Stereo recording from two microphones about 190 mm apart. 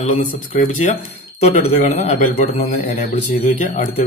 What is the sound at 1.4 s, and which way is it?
A man's voice, 35° left (ahead or behind).